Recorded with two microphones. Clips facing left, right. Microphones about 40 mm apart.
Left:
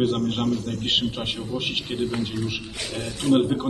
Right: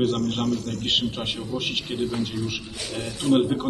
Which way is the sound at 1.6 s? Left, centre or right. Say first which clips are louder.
Even; centre.